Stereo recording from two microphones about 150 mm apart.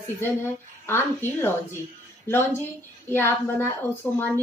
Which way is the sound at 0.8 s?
15° left (ahead or behind).